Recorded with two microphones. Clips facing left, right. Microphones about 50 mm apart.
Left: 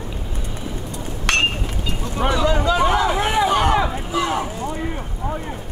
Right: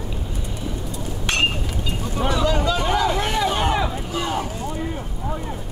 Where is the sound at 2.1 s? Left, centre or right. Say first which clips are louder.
Left 2 dB; left.